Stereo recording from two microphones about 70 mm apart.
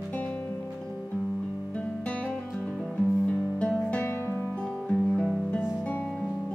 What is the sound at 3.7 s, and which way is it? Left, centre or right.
Music, centre.